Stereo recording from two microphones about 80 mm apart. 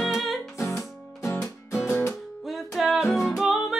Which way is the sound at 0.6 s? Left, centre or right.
Left.